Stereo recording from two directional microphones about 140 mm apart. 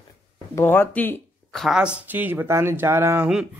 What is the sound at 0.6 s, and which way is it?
Speech, 15° left (ahead or behind).